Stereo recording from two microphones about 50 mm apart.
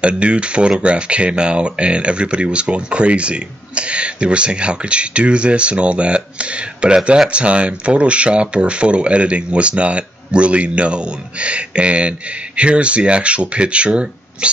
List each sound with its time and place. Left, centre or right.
0.0 s speech: right